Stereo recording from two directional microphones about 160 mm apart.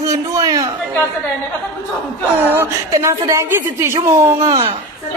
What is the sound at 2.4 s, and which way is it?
A woman's voice, 15° right (ahead or behind).